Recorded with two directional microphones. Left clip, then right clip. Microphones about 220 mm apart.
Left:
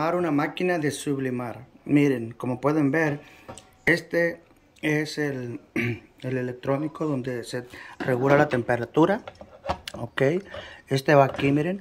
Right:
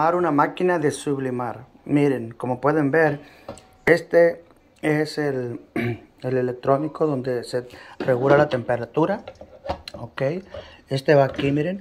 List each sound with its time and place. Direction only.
0.0 s speech: 15° left (ahead or behind)
10.9 s speech: 15° left (ahead or behind)